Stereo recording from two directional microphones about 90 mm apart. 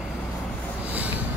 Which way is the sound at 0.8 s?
20° right (ahead or behind).